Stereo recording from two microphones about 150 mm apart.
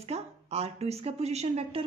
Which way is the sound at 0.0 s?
45° right (ahead or behind).